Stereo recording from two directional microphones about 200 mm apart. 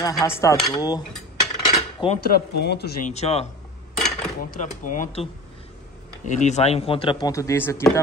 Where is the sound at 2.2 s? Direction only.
50° left (ahead or behind).